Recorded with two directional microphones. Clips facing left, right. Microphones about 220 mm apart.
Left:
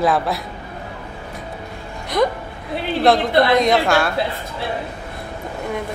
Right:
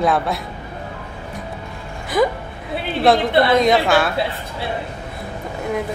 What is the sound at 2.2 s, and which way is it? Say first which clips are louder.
A woman's voice: right 1 dB; 5° right (ahead or behind).